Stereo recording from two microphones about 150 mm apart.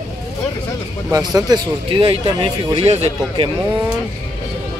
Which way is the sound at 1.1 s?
25° right (ahead or behind).